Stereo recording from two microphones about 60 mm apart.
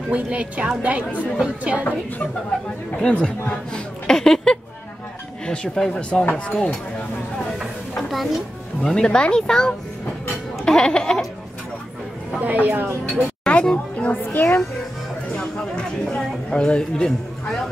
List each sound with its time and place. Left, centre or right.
0.1 s a woman's voice: right
3.0 s speech: centre
8.8 s speech: centre
12.3 s a woman's voice: right
13.1 s speech: centre; by 14.6 s left
15.3 s a sound: centre